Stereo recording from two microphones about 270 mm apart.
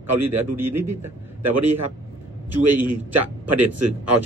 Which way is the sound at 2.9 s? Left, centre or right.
Right.